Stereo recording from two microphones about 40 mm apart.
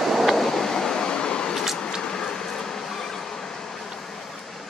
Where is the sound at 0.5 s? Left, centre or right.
Centre.